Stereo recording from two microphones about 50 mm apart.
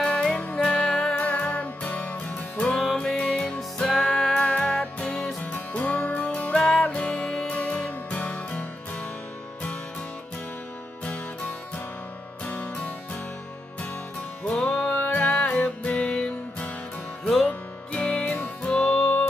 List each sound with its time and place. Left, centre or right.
0.0 s music: centre
1.1 s music: left
5.4 s music: left
12.5 s music: left
14.4 s music: left
17.2 s music: centre
17.5 s music: left